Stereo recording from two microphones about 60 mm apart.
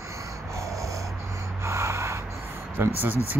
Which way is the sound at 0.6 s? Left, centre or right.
Right.